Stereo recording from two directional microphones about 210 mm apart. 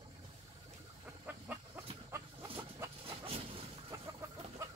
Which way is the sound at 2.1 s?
15° right (ahead or behind).